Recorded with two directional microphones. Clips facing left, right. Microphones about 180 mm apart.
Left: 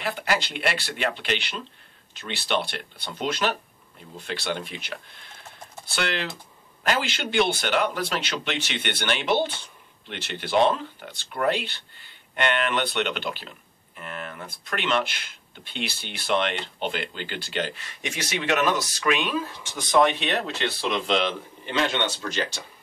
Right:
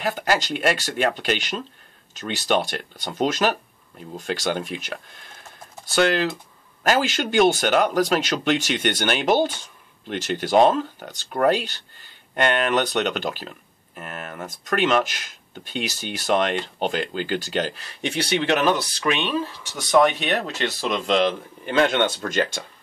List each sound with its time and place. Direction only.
0.0 s speech: 45° right (ahead or behind); by 19.4 s 30° right (ahead or behind)
19.8 s speech: 45° right (ahead or behind)